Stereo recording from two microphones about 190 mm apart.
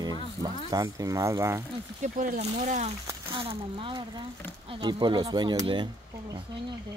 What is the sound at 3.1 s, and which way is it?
Speech, 25° right (ahead or behind).